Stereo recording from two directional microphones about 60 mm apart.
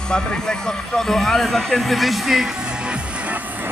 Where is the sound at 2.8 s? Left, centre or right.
Centre.